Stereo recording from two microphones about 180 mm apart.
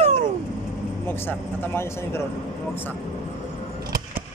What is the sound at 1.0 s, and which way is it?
Speech, 10° left (ahead or behind).